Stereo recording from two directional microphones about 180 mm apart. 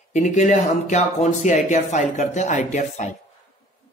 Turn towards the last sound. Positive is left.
turn(degrees=40)  # may be behind; listen again after turning